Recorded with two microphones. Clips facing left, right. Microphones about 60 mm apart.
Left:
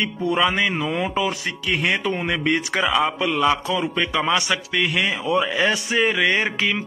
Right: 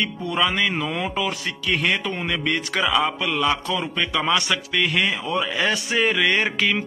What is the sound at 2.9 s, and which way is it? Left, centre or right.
Music, centre.